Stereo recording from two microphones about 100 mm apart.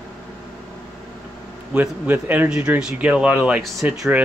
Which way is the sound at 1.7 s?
15° right (ahead or behind).